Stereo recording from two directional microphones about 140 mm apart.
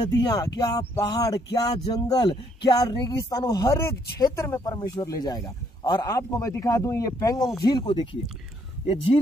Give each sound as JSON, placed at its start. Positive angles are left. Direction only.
{"t": 0.1, "sound": "speech", "side_deg": 30}